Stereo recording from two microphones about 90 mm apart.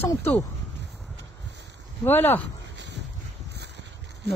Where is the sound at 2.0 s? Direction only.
25° left (ahead or behind).